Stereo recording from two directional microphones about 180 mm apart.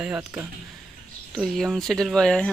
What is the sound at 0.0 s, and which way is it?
Speech, 5° right (ahead or behind).